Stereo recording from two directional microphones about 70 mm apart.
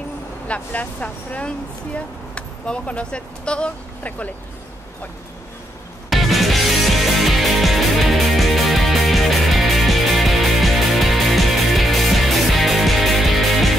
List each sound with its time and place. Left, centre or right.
0.5 s speech: centre
6.0 s music: centre